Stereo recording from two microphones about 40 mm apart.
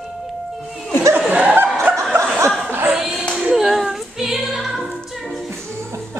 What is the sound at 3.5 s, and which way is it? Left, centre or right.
Female singing, centre.